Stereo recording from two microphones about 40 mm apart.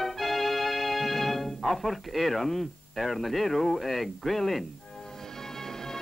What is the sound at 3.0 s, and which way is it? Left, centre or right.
Speech, centre.